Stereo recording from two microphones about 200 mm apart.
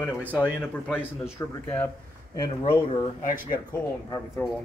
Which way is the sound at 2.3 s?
20° left (ahead or behind).